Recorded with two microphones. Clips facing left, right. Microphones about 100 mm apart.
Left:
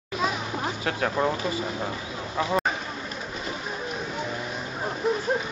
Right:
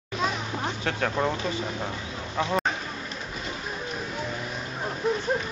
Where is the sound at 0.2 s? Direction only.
5° left (ahead or behind).